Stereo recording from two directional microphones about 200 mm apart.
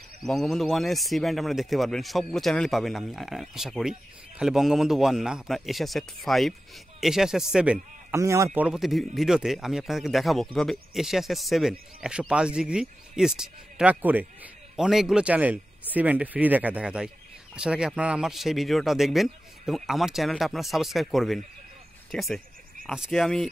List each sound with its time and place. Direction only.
0.3 s a man's voice: centre (ahead or behind); by 8.5 s 15° right (ahead or behind)
8.5 s a man's voice: 5° right (ahead or behind)